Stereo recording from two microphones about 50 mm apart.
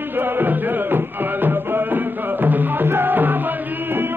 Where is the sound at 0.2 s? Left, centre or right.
Right.